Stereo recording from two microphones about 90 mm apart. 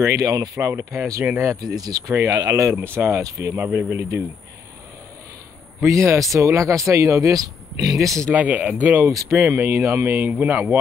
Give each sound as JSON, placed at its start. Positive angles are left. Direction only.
{"t": 0.0, "sound": "speech", "side_deg": -40}
{"t": 1.2, "sound": "speech", "side_deg": -20}
{"t": 1.5, "sound": "speech", "side_deg": -40}
{"t": 3.5, "sound": "speech", "side_deg": -25}
{"t": 5.8, "sound": "speech", "side_deg": -35}
{"t": 8.4, "sound": "speech", "side_deg": -15}
{"t": 9.3, "sound": "speech", "side_deg": -30}